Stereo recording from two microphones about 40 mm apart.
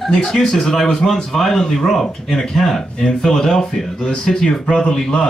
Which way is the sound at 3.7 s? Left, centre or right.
Centre.